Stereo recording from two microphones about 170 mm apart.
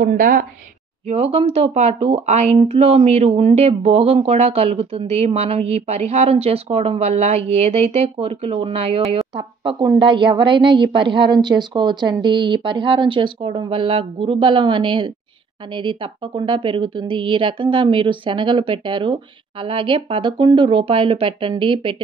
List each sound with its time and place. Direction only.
0.0 s a woman's voice: 50° right (ahead or behind)
1.0 s a woman's voice: 35° right (ahead or behind)